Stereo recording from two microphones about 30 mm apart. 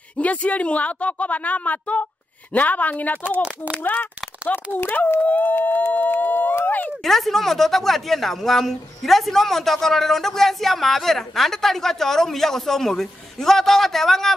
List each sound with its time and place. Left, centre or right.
0.2 s a woman's voice: left
3.8 s speech: left
4.5 s a woman's voice: left
4.9 s speech: left
7.0 s speech: centre